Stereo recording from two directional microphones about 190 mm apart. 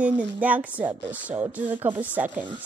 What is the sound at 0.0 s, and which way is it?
Speech, 5° right (ahead or behind).